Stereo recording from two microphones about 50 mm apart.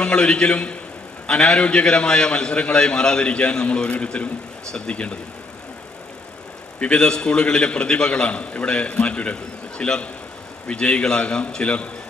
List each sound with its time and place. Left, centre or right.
0.0 s a man's voice: centre
6.8 s a man's voice: centre